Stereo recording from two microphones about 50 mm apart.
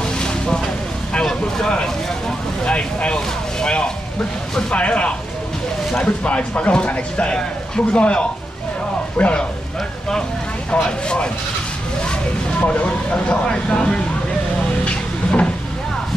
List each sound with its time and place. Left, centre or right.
0.0 s vehicle: centre
1.2 s speech: centre
10.7 s speech: left
12.5 s speech: left
14.9 s cupboard open or close: left